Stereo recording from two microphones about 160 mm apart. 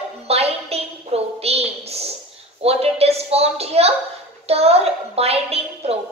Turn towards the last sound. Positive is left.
turn(degrees=-40)  # may be behind; listen again after turning